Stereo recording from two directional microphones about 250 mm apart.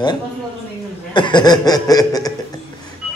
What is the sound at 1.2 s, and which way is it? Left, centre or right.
Chuckle, centre.